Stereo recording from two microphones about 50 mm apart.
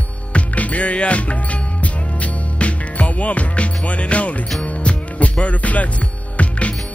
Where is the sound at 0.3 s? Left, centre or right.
Left.